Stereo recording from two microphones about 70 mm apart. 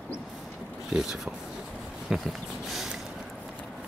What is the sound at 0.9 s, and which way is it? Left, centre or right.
Speech, centre.